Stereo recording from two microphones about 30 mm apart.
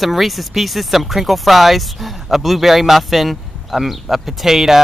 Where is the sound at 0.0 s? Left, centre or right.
Centre.